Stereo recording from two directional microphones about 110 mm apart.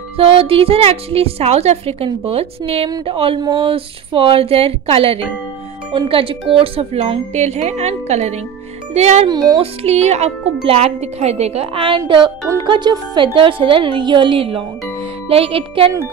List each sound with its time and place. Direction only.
0.2 s a woman's voice: 60° right (ahead or behind)
3.3 s speech: 40° right (ahead or behind)
3.6 s a woman's voice: 55° right (ahead or behind); by 9.3 s 85° right
9.3 s speech: 35° right (ahead or behind)
9.6 s speech: 80° right
10.6 s speech: 65° right (ahead or behind)
12.6 s a woman's voice: 45° right (ahead or behind); by 15.9 s 60° right (ahead or behind)